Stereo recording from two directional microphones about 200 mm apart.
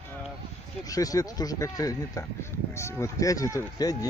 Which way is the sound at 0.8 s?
15° left (ahead or behind).